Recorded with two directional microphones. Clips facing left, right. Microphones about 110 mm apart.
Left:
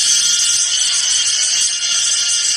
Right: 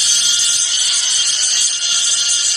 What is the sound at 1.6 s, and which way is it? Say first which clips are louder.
Music: right 1 dB; 5° right (ahead or behind).